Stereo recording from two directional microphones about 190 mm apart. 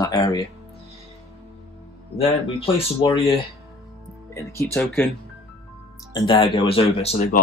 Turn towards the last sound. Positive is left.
turn(degrees=30)  # may be behind; listen again after turning